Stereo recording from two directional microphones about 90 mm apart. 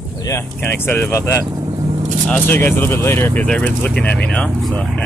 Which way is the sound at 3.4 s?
10° left (ahead or behind).